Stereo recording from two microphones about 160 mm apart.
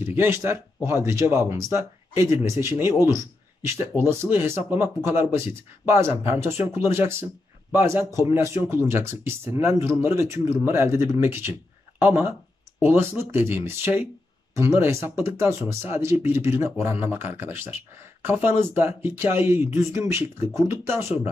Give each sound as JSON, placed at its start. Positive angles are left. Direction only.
{"t": 0.0, "sound": "speech", "side_deg": -15}